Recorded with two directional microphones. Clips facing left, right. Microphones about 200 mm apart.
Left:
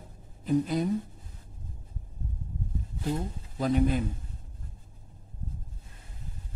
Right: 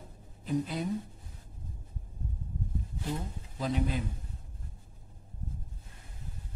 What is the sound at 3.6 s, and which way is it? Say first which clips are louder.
Speech: left 6 dB; 50° left (ahead or behind).